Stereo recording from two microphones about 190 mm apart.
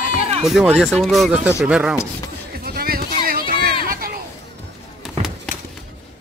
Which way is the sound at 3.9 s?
50° right (ahead or behind).